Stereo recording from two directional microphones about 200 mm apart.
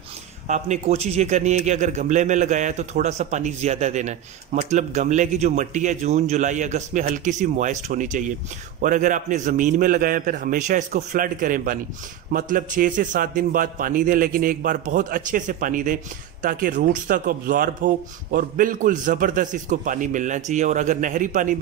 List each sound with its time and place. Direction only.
0.5 s a man's voice: 35° right (ahead or behind)